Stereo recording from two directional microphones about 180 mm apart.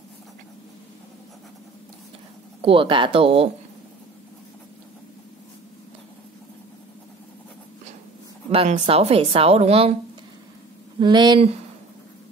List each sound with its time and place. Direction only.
2.6 s a woman's voice: 30° right (ahead or behind)
8.5 s a woman's voice: 40° right (ahead or behind)
11.0 s speech: 25° right (ahead or behind)